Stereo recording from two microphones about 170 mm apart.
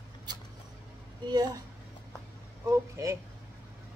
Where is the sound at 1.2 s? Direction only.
25° right (ahead or behind).